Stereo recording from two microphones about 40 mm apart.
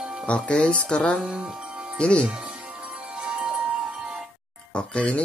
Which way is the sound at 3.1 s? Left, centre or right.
Right.